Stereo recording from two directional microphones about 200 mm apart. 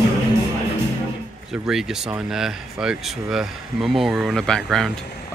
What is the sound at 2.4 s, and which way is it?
Speech, 5° right (ahead or behind).